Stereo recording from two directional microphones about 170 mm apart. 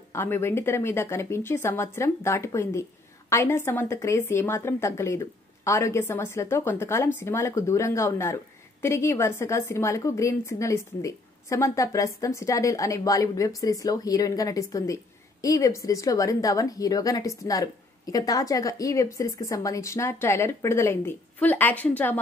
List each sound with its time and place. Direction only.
0.1 s a woman's voice: 15° left (ahead or behind)